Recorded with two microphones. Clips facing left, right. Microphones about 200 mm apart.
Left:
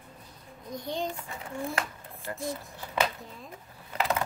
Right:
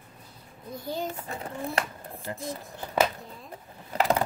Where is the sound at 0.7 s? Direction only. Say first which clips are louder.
Even; 5° right (ahead or behind).